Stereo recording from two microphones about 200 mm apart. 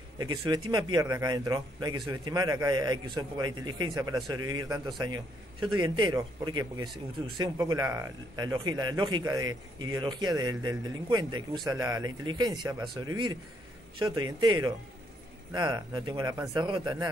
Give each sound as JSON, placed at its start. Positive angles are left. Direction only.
{"t": 0.2, "sound": "speech", "side_deg": -20}